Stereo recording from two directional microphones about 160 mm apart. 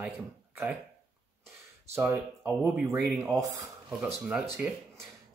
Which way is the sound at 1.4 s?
15° right (ahead or behind).